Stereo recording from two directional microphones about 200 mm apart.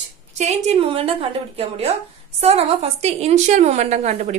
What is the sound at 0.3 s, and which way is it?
Speech, 35° right (ahead or behind).